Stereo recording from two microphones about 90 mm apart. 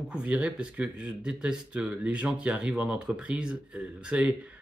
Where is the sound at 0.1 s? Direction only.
10° right (ahead or behind).